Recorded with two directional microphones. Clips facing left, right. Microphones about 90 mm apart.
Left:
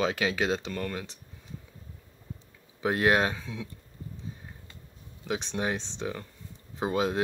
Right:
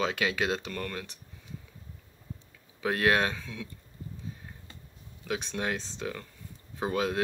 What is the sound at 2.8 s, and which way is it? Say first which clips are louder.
Speech: left 2 dB; 20° left (ahead or behind).